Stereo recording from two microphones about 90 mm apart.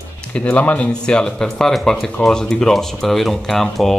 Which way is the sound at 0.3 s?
15° left (ahead or behind).